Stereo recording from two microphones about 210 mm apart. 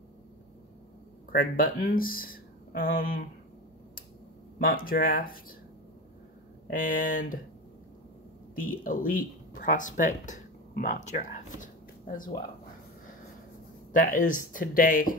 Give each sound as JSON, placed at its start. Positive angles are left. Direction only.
{"t": 1.3, "sound": "speech", "side_deg": 45}
{"t": 4.6, "sound": "speech", "side_deg": 45}
{"t": 6.7, "sound": "speech", "side_deg": 40}
{"t": 8.5, "sound": "speech", "side_deg": 40}
{"t": 13.9, "sound": "speech", "side_deg": 40}